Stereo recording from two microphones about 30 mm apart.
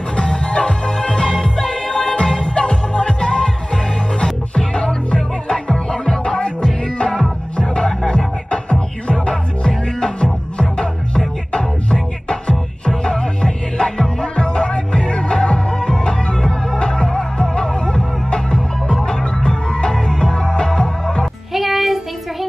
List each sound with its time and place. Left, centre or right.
0.1 s music: left
7.5 s music: left
21.5 s child singing: centre